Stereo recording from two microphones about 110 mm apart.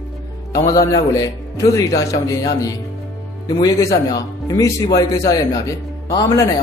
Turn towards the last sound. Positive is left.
turn(degrees=35)  # may be behind; listen again after turning